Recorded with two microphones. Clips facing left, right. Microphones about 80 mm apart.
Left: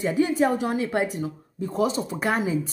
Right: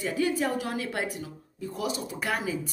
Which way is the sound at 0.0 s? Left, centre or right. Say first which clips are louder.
Left 6 dB; left.